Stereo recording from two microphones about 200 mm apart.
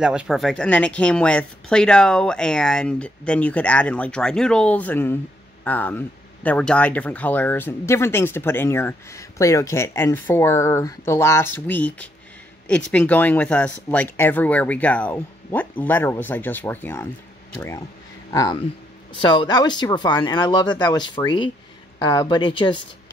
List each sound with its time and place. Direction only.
0.0 s speech: 5° right (ahead or behind); by 22.8 s 25° left (ahead or behind)